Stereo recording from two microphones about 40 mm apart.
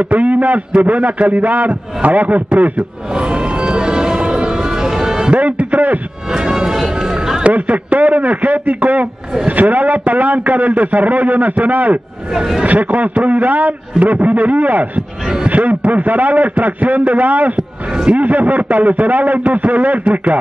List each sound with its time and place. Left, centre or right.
0.0 s a man's voice: right
3.2 s music: right
5.3 s music: right
6.3 s music: centre
7.4 s a man's voice: right
17.6 s speech: right
18.1 s a man's voice: right